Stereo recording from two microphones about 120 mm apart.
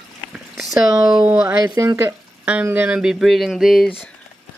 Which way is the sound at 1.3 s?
15° right (ahead or behind).